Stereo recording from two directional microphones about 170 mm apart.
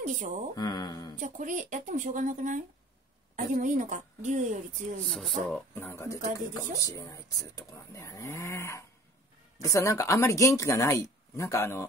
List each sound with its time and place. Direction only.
0.0 s a woman's voice: 45° right (ahead or behind)
0.6 s speech: 25° left (ahead or behind)
1.1 s a woman's voice: 45° right (ahead or behind)
5.1 s speech: centre (ahead or behind)
5.8 s speech: 15° left (ahead or behind)